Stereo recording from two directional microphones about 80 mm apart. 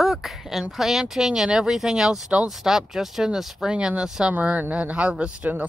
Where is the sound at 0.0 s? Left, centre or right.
Centre.